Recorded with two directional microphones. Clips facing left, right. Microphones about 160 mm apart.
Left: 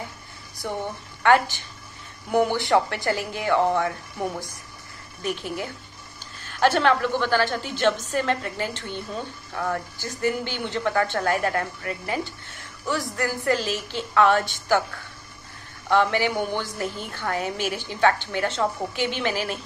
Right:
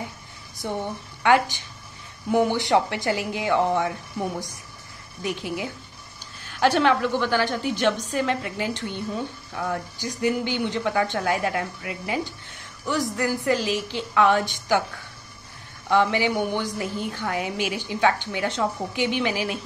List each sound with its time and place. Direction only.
1.2 s speech: 15° right (ahead or behind)
5.2 s speech: 15° right (ahead or behind)
15.9 s speech: 15° right (ahead or behind)